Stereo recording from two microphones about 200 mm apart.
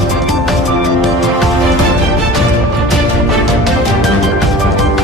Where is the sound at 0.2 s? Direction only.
Centre (ahead or behind).